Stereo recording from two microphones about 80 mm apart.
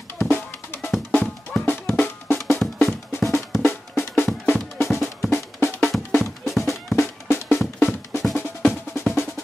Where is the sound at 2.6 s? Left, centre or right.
Centre.